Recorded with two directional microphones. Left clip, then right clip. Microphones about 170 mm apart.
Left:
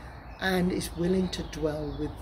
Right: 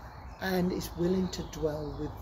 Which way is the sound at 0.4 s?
15° right (ahead or behind).